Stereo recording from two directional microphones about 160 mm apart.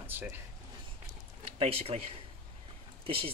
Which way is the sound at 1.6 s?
40° right (ahead or behind).